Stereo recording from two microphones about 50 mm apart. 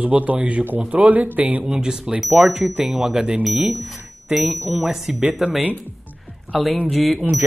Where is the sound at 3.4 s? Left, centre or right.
Centre.